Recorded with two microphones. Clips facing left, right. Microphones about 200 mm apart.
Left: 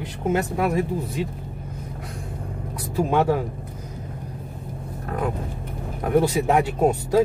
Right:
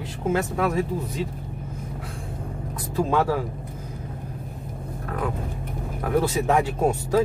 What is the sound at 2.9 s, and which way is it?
Speech, 20° left (ahead or behind).